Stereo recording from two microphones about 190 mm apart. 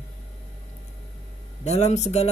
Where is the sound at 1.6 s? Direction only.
35° left (ahead or behind).